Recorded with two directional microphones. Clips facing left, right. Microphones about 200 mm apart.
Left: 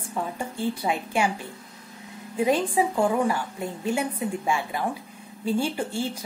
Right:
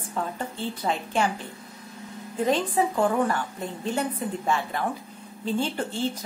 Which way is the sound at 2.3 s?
10° left (ahead or behind).